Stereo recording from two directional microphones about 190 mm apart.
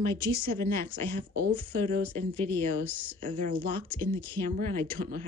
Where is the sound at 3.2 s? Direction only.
45° right (ahead or behind).